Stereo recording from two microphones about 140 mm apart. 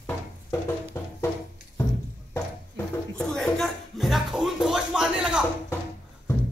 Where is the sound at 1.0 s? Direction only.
15° left (ahead or behind).